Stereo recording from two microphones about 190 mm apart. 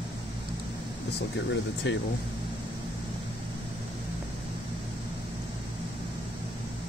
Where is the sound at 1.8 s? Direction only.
65° left (ahead or behind).